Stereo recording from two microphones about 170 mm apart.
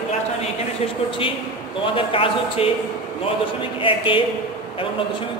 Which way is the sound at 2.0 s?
35° left (ahead or behind).